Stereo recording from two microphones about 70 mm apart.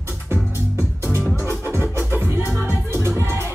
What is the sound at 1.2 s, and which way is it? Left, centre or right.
Music, left.